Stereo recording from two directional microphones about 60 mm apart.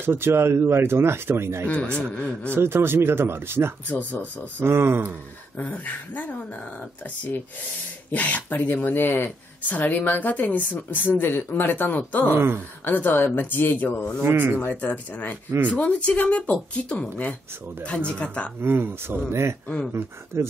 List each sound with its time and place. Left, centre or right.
0.0 s speech: right
2.1 s speech: left
2.5 s speech: right
3.9 s speech: left
4.6 s speech: right
5.6 s speech: left
8.1 s speech: left
12.3 s speech: right
12.8 s speech: left
14.3 s speech: right
14.6 s speech: left
17.8 s speech: centre
18.6 s speech: right